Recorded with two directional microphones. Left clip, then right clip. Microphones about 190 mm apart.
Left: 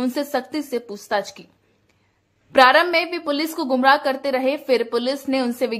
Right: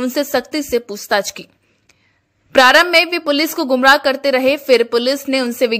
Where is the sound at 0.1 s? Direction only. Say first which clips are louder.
Right 6 dB; 15° right (ahead or behind).